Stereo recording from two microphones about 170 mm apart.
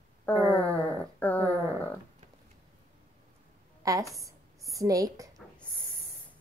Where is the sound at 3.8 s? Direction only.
20° right (ahead or behind).